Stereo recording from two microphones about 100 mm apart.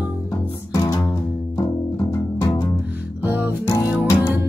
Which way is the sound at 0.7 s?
35° left (ahead or behind).